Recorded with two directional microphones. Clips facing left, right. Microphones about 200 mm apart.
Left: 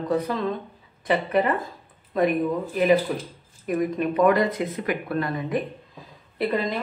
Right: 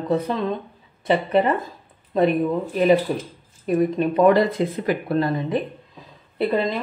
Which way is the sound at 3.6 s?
30° right (ahead or behind).